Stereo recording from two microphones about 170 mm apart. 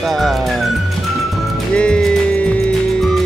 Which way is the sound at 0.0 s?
Centre (ahead or behind).